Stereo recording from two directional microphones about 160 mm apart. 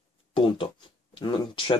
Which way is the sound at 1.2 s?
30° left (ahead or behind).